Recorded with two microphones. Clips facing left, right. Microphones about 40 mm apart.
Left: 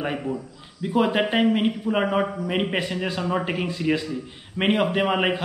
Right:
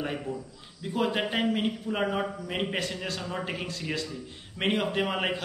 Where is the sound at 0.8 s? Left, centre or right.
Left.